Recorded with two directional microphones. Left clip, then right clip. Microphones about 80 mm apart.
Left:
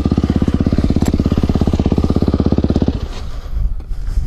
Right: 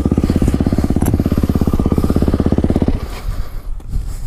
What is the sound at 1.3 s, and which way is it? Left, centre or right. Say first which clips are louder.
Vehicle: even; left.